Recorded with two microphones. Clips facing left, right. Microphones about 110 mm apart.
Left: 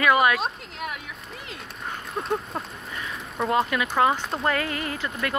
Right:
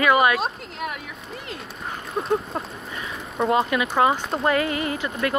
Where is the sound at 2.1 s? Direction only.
Centre (ahead or behind).